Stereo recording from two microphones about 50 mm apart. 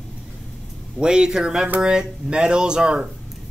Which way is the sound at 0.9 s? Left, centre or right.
Centre.